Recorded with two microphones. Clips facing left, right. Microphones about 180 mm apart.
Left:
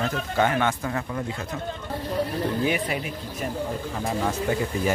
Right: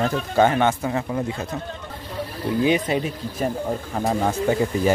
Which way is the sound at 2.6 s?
25° right (ahead or behind).